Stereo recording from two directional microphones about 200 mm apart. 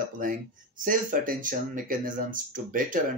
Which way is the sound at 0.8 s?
45° right (ahead or behind).